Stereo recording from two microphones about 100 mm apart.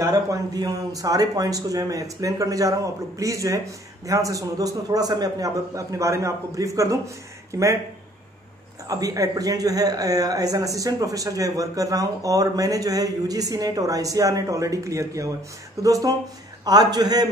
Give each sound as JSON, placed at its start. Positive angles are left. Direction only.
{"t": 0.3, "sound": "speech", "side_deg": -35}
{"t": 8.8, "sound": "speech", "side_deg": -35}